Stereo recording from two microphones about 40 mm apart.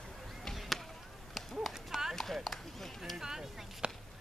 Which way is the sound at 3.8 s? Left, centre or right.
Right.